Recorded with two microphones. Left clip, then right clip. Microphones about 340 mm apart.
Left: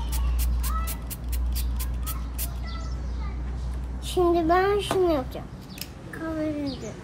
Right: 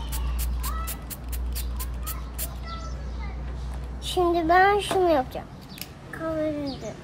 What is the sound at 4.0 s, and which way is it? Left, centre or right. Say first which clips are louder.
Child singing: left 1 dB; right.